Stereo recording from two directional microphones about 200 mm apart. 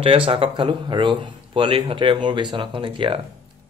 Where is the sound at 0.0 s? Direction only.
25° right (ahead or behind).